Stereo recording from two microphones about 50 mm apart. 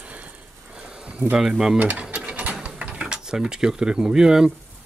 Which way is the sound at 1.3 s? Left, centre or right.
Centre.